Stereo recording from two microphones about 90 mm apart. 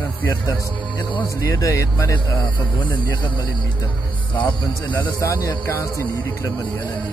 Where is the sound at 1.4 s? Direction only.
40° left (ahead or behind).